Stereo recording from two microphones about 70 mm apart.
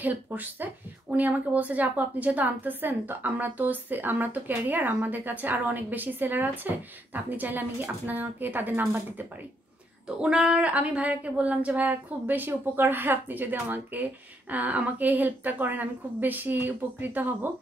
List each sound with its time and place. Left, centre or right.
0.0 s a woman's voice: right
10.0 s a woman's voice: centre